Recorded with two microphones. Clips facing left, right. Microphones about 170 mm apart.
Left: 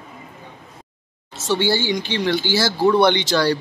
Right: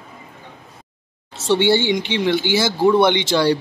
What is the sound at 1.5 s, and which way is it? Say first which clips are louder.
Speech: right 4 dB; 25° right (ahead or behind).